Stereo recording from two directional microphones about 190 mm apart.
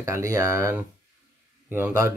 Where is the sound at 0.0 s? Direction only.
15° right (ahead or behind).